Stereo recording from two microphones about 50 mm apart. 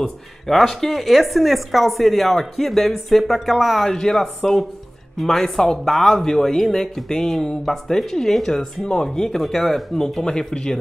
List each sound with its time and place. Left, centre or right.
0.0 s a woman's voice: centre